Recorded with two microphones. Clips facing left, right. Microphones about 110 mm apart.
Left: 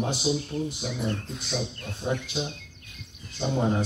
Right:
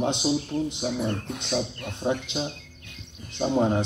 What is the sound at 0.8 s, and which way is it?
Speech, 40° right (ahead or behind).